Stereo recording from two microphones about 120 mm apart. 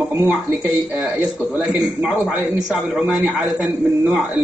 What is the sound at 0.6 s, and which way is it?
A man's voice, 10° right (ahead or behind).